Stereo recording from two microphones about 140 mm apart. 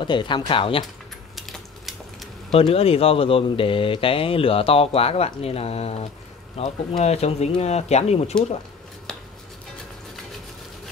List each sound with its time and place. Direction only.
0.0 s speech: 35° left (ahead or behind)
1.3 s typing: centre (ahead or behind)
2.5 s speech: 45° left (ahead or behind)